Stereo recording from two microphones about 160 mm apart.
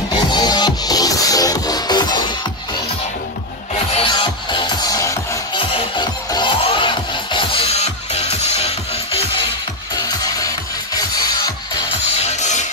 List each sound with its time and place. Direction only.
0.3 s music: 25° left (ahead or behind)
3.9 s music: 30° left (ahead or behind)
5.6 s music: 30° left (ahead or behind)
9.9 s music: 20° left (ahead or behind)
12.2 s music: 45° left (ahead or behind)